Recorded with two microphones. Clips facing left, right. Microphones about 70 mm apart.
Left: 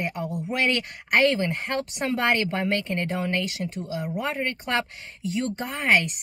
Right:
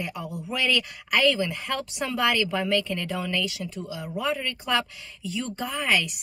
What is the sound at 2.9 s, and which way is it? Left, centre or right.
Speech, left.